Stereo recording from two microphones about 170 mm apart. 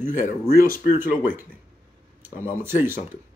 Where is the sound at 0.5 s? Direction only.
60° left (ahead or behind).